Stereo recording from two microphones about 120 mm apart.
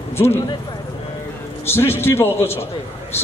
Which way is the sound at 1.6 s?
20° left (ahead or behind).